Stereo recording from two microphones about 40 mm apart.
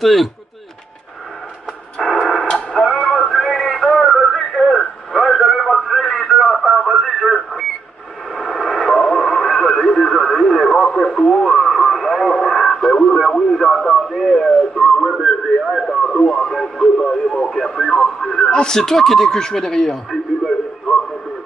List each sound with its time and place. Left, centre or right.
0.0 s speech: centre
2.1 s radio: centre
2.8 s synthetic singing: centre
6.4 s radio: centre
15.9 s radio: centre
18.5 s speech: centre